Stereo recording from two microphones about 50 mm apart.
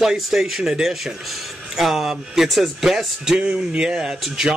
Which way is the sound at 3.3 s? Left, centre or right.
Right.